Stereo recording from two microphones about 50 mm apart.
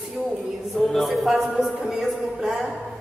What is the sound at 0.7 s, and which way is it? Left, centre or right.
A man's voice, centre.